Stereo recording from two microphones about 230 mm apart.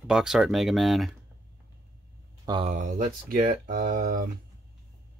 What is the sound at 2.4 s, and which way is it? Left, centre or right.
Speech, right.